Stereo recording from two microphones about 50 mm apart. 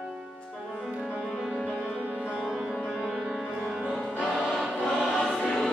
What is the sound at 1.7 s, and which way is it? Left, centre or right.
Music, centre.